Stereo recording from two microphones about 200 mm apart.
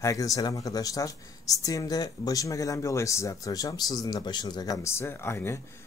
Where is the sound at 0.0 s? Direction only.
15° left (ahead or behind).